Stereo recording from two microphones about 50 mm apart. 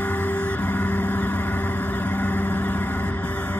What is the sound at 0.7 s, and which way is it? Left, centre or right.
Music, left.